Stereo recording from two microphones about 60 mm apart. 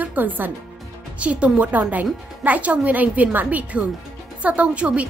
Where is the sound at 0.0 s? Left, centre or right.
Right.